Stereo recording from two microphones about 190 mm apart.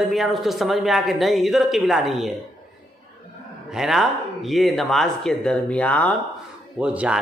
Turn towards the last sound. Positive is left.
turn(degrees=-5)  # may be behind; listen again after turning